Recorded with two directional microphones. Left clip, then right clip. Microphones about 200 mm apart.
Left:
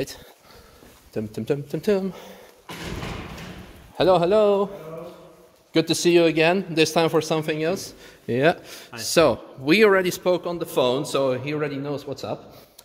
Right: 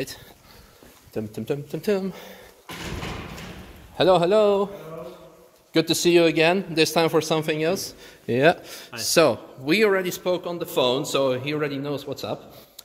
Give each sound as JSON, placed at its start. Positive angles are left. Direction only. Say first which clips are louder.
{"t": 1.4, "sound": "speech", "louder": "left 3 dB", "side_deg": 20}
{"t": 3.9, "sound": "speech", "louder": "even", "side_deg": 5}
{"t": 9.7, "sound": "speech", "louder": "left 3 dB", "side_deg": 35}
{"t": 10.0, "sound": "speech", "louder": "left 3 dB", "side_deg": 50}
{"t": 10.4, "sound": "speech", "louder": "left 2 dB", "side_deg": 30}
{"t": 10.7, "sound": "speech", "louder": "even", "side_deg": 15}